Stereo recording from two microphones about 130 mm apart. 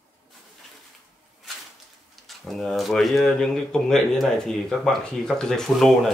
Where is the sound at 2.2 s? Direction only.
Centre (ahead or behind).